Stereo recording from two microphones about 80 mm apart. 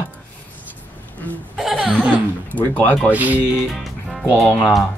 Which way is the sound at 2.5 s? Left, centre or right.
Centre.